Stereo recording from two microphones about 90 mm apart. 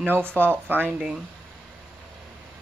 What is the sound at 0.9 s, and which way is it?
Speech, 10° right (ahead or behind).